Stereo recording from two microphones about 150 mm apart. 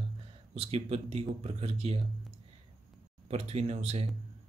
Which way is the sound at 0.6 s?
40° right (ahead or behind).